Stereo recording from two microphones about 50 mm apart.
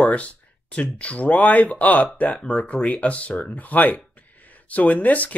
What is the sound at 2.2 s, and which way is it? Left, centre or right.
Speech, centre.